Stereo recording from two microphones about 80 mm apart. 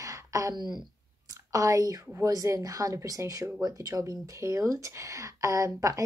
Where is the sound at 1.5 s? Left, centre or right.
Right.